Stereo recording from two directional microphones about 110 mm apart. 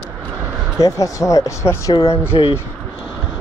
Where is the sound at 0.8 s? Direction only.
30° left (ahead or behind).